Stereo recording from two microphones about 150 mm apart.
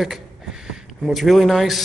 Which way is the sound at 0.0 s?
Centre (ahead or behind).